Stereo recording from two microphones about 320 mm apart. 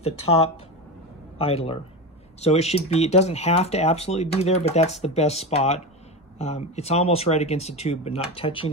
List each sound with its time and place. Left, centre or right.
0.0 s speech: centre